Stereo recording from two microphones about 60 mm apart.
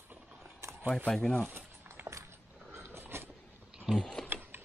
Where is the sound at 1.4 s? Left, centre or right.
Right.